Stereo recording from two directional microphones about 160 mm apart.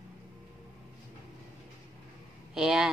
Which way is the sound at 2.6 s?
Centre (ahead or behind).